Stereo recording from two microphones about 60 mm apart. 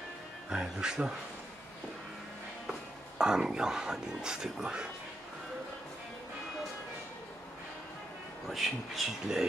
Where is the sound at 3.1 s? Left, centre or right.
Centre.